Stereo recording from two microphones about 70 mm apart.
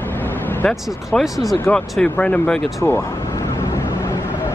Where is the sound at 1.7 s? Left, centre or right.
Centre.